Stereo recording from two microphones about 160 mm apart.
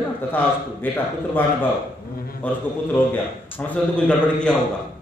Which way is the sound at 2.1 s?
70° left (ahead or behind).